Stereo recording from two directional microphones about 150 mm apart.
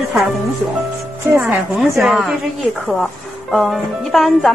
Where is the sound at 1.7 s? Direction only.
Centre (ahead or behind).